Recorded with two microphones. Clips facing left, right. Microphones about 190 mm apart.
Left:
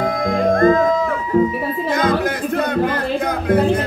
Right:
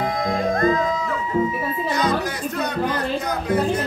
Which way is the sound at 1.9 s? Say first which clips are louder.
Left 5 dB; 55° left (ahead or behind).